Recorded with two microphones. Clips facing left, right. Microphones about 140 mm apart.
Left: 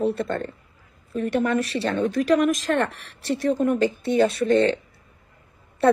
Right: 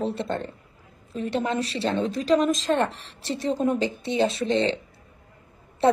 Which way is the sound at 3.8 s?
50° left (ahead or behind).